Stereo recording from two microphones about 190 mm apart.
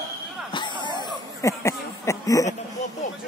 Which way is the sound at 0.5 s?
25° left (ahead or behind).